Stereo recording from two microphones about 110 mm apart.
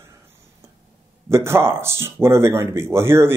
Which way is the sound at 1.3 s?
25° right (ahead or behind).